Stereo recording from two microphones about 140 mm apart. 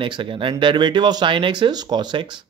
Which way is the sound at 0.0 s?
35° right (ahead or behind).